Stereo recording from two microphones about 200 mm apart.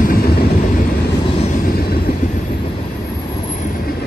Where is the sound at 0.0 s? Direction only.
45° left (ahead or behind).